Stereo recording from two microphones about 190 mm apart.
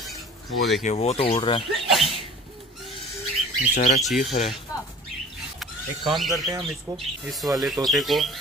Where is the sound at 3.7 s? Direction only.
40° left (ahead or behind).